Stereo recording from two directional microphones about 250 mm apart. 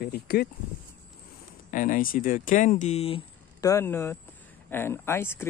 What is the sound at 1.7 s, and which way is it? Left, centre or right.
Speech, left.